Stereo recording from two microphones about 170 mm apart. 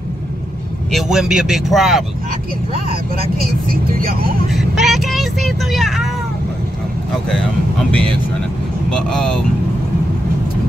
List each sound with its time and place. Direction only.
0.9 s speech: centre (ahead or behind)
4.0 s speech: 60° right (ahead or behind)
4.5 s speech: centre (ahead or behind)
8.9 s speech: 5° left (ahead or behind)